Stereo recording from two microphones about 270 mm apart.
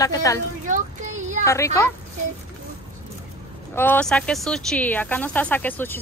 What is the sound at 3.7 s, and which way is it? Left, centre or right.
Speech, centre.